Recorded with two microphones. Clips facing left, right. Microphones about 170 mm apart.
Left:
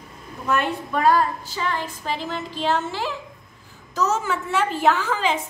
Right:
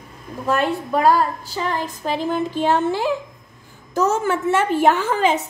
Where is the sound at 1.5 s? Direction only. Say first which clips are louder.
Right 3 dB; 45° right (ahead or behind).